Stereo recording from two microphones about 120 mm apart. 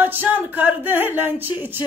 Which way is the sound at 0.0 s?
15° right (ahead or behind).